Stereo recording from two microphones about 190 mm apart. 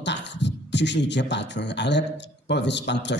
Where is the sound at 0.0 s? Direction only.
65° left (ahead or behind).